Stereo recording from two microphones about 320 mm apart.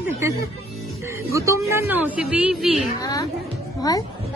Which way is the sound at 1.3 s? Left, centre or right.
Centre.